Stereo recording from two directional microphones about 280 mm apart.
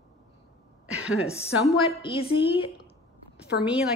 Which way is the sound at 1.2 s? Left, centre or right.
Left.